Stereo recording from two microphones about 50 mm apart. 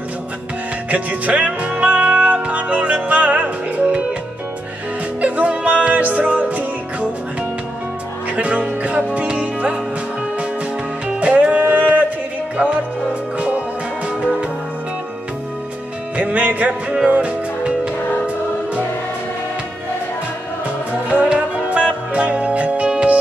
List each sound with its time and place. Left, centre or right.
0.8 s music: right
5.2 s music: right
8.4 s music: right
11.1 s music: right
14.0 s music: right
16.2 s music: right
21.1 s music: right